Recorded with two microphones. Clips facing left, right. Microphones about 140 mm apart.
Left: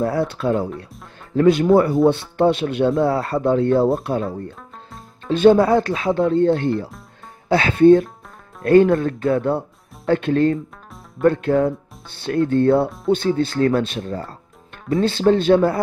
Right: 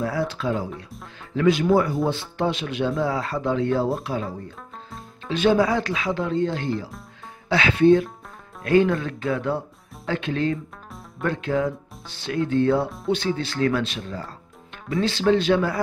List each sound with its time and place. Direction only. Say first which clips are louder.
0.0 s speech: left 5 dB; 55° left (ahead or behind)
5.3 s speech: left 6 dB; 50° left (ahead or behind)